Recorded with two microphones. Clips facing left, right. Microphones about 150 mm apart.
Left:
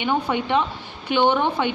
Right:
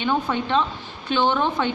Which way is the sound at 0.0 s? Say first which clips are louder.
Even; 15° left (ahead or behind).